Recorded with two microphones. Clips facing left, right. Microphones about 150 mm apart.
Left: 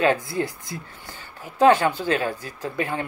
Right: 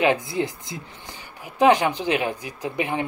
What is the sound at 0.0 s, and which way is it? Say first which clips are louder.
Speech: even; 20° right (ahead or behind).